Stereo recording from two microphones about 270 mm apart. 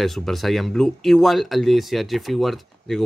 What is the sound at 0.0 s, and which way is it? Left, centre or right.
Speech, centre.